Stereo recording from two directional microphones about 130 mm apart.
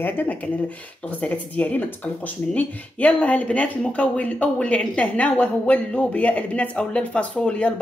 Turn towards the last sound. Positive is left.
turn(degrees=10)  # may be behind; listen again after turning